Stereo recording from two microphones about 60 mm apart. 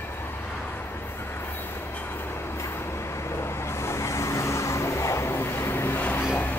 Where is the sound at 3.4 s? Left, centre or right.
Left.